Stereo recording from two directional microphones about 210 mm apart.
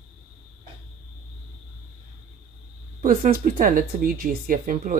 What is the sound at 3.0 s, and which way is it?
Speech, 40° right (ahead or behind).